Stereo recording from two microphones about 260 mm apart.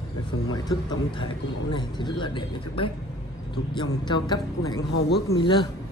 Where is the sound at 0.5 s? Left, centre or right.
Centre.